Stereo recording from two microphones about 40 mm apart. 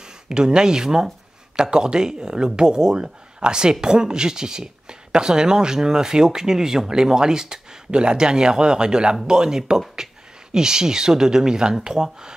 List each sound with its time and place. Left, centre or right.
0.3 s speech: centre